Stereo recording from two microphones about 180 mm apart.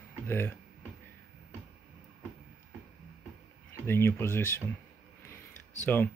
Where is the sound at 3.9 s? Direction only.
15° left (ahead or behind).